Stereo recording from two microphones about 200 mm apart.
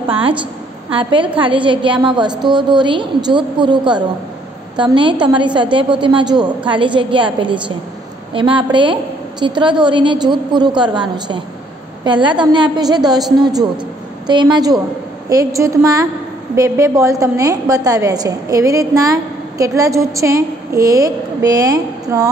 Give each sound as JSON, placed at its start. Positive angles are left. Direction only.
{"t": 0.8, "sound": "a woman's voice", "side_deg": -25}